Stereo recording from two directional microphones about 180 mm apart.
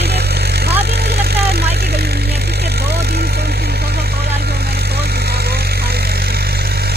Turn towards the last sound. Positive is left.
turn(degrees=-60)  # may be behind; listen again after turning